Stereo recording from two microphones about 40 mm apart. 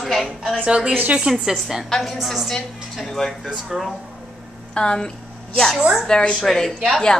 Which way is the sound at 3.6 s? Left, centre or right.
Centre.